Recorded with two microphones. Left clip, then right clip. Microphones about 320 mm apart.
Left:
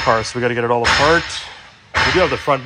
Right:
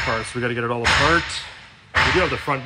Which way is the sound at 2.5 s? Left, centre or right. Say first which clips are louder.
Left 7 dB; centre.